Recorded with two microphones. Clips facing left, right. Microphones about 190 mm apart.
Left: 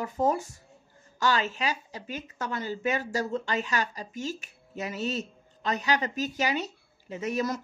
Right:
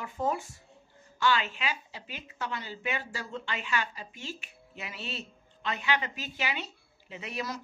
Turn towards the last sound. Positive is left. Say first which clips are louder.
# left 8 dB
turn(degrees=45)  # may be behind; listen again after turning